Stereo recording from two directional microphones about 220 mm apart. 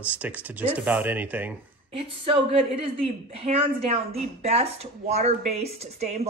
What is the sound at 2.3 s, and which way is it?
A woman's voice, 25° right (ahead or behind).